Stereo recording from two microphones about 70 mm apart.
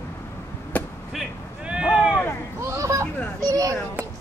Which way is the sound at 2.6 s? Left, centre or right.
Right.